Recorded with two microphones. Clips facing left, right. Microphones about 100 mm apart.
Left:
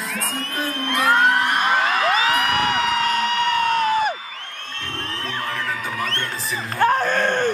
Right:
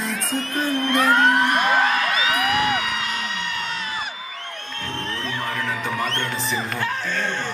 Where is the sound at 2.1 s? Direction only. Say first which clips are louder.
Left 2 dB; 45° left (ahead or behind).